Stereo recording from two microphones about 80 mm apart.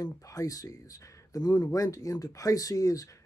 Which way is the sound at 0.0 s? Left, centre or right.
Left.